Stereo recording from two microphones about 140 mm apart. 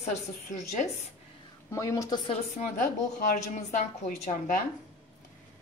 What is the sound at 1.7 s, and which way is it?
Speech, 20° left (ahead or behind).